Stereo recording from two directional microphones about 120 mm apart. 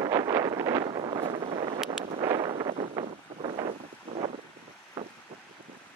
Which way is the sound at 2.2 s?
40° right (ahead or behind).